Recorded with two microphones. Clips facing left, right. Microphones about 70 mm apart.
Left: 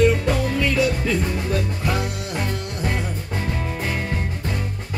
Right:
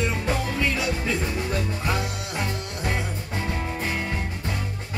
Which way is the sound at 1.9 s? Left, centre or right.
Left.